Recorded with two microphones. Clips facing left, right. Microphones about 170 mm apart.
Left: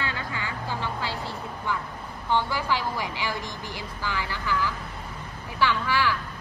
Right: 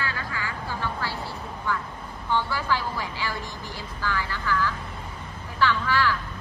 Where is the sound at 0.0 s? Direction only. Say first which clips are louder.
Even; 25° left (ahead or behind).